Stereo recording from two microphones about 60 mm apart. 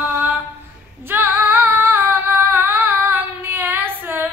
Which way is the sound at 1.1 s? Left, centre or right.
Right.